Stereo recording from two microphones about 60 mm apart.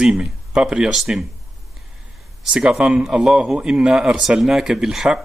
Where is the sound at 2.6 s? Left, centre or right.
Centre.